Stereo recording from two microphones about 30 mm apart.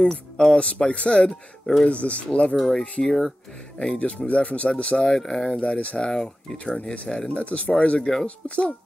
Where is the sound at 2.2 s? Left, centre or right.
Left.